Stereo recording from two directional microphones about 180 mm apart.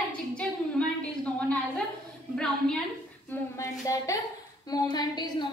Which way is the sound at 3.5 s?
20° left (ahead or behind).